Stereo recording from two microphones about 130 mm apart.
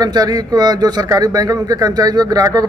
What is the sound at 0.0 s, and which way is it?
A man's voice, 30° right (ahead or behind).